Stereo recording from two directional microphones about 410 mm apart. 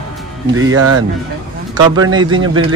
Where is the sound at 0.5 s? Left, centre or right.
Right.